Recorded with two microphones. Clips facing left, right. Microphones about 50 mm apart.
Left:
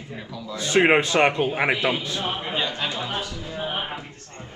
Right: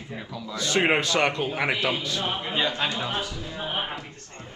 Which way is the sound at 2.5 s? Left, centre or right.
Centre.